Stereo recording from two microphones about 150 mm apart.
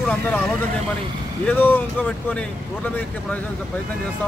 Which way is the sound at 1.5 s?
10° left (ahead or behind).